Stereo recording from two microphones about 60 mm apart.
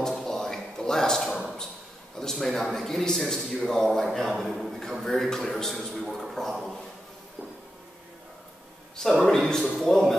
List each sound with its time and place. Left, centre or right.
0.0 s a sound: centre
2.1 s a man's voice: centre
8.9 s speech: centre